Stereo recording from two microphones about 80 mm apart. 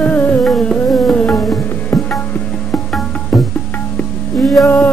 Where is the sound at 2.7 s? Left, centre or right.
Centre.